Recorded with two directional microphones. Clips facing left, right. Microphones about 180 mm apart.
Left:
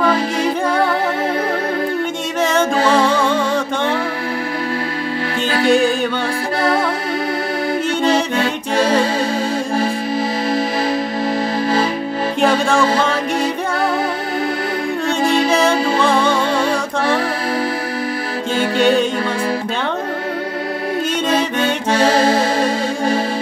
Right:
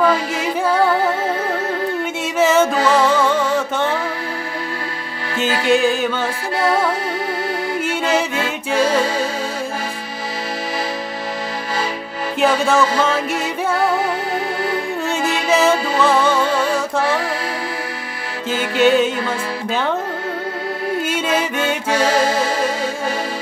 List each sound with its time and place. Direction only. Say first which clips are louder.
0.4 s music: left 1 dB; 5° right (ahead or behind)
2.4 s music: right 1 dB; 5° right (ahead or behind)
5.7 s music: left 1 dB; centre (ahead or behind)
8.0 s music: left 3 dB; 5° right (ahead or behind)
12.4 s music: even; 5° right (ahead or behind)
15.4 s music: left 1 dB; 5° right (ahead or behind)
18.8 s music: right 1 dB; 5° right (ahead or behind)
21.1 s music: left 2 dB; 10° right (ahead or behind)
21.9 s accordion: left 3 dB; 35° left (ahead or behind)